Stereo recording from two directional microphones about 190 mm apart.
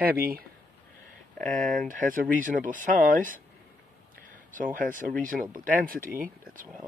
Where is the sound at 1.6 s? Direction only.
45° right (ahead or behind).